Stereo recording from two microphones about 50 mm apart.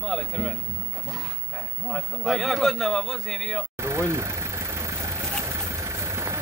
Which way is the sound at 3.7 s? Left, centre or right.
Right.